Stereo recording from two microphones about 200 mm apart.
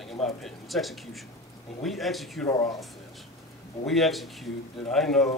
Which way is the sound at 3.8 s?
Centre (ahead or behind).